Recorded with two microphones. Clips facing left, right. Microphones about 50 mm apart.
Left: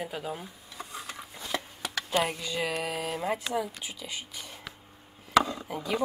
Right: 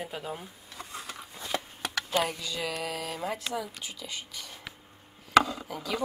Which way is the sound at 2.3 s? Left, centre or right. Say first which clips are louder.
Left 3 dB; left.